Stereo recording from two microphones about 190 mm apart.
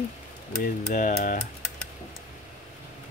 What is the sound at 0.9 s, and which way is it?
Speech, 45° left (ahead or behind).